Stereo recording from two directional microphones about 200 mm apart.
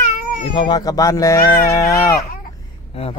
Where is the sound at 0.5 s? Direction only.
20° left (ahead or behind).